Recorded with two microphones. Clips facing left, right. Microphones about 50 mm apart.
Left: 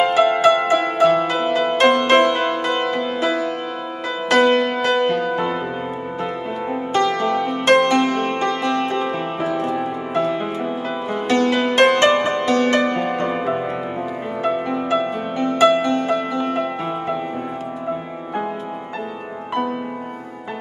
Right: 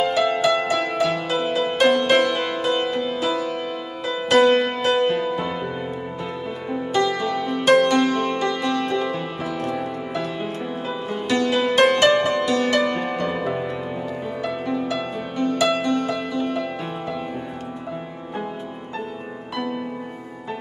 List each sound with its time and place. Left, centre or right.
0.0 s music: left
6.7 s music: left
10.4 s music: left
12.7 s music: left